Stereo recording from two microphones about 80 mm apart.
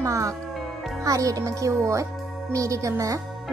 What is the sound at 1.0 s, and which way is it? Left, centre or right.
Speech, right.